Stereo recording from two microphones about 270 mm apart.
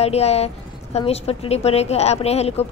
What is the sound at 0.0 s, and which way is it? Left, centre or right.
A woman's voice, left.